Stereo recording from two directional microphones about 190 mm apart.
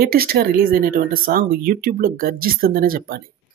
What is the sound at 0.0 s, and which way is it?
A man's voice, 50° right (ahead or behind).